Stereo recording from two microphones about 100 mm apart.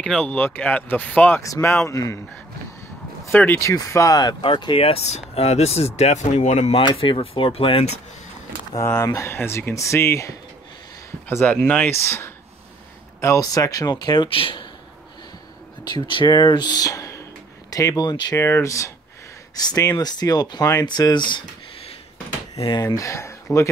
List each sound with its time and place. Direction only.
0.0 s speech: 10° left (ahead or behind)
1.4 s speech: 30° left (ahead or behind)
3.3 s speech: 20° left (ahead or behind); by 4.4 s 40° left (ahead or behind)
4.4 s speech: 55° left (ahead or behind); by 6.8 s 90° left
6.8 s speech: 60° left (ahead or behind)
8.7 s speech: 25° left (ahead or behind)
11.2 s speech: 20° left (ahead or behind)
12.0 s speech: 25° left (ahead or behind); by 14.3 s 45° left (ahead or behind)
14.3 s speech: 60° left (ahead or behind)
15.8 s speech: 50° left (ahead or behind)
18.3 s speech: 25° left (ahead or behind); by 21.5 s 50° left (ahead or behind)
22.7 s speech: 40° left (ahead or behind)